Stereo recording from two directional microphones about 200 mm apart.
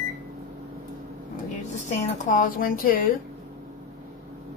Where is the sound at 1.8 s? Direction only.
40° left (ahead or behind).